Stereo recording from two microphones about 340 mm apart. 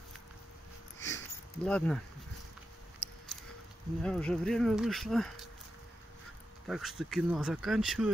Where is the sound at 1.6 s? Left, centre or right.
Centre.